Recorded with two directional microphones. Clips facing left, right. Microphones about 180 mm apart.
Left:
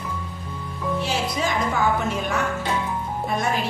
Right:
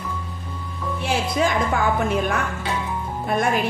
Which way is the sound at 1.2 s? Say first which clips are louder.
Right 3 dB; 55° right (ahead or behind).